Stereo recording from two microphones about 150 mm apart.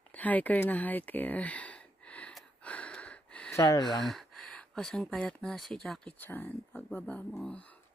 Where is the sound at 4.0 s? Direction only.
Centre (ahead or behind).